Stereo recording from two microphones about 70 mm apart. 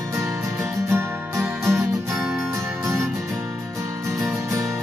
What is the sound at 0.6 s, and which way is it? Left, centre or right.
Music, right.